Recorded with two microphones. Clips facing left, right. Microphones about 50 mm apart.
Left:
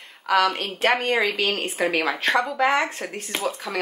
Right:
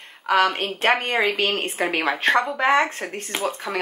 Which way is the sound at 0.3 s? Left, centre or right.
Right.